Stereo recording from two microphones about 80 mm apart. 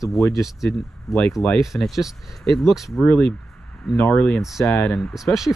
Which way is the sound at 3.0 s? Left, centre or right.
Centre.